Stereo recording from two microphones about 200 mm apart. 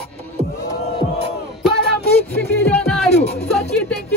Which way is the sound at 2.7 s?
5° left (ahead or behind).